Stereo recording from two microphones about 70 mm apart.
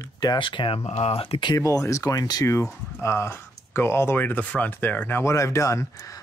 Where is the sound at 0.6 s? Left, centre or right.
Left.